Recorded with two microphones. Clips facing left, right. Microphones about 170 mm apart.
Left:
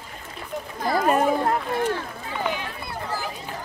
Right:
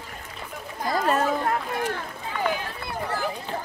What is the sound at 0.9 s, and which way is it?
Children playing, 15° left (ahead or behind).